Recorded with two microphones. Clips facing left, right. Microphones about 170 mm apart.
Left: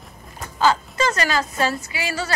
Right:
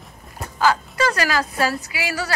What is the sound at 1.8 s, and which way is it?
Speech, 10° right (ahead or behind).